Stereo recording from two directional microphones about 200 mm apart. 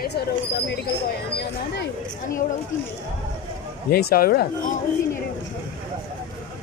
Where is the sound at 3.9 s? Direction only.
50° left (ahead or behind).